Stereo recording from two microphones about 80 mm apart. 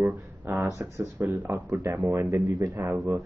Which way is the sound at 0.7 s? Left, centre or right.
Right.